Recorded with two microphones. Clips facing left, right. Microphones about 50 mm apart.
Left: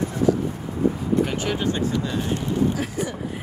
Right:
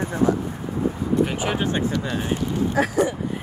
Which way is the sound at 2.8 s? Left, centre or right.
Right.